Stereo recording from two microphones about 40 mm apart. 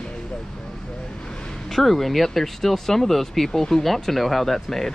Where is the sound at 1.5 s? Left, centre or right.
Centre.